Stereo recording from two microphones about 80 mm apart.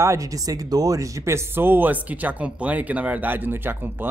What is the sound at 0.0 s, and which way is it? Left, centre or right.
Speech, right.